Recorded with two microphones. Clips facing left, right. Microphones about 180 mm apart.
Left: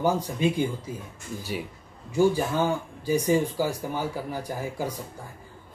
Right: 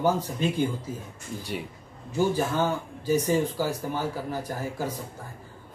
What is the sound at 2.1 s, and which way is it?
Speech, 10° left (ahead or behind).